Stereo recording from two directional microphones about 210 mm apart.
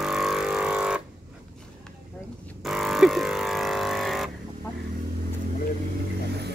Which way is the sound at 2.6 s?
Centre (ahead or behind).